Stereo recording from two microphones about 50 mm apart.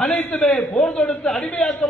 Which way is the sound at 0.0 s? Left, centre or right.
Centre.